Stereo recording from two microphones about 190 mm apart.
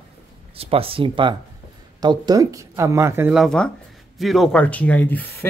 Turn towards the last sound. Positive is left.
turn(degrees=10)  # may be behind; listen again after turning